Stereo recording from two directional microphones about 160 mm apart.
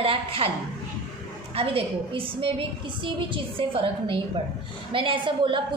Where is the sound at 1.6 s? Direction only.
35° right (ahead or behind).